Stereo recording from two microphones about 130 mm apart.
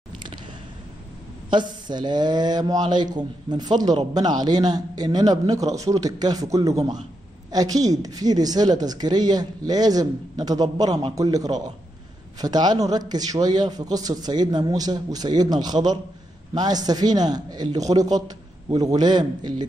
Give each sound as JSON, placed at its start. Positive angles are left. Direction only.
{"t": 1.5, "sound": "a man's voice", "side_deg": -35}